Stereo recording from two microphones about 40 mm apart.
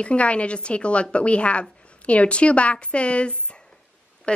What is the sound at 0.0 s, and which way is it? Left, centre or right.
A woman's voice, left.